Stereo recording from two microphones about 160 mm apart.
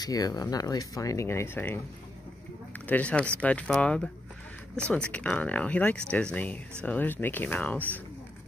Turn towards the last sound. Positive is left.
turn(degrees=10)  # may be behind; listen again after turning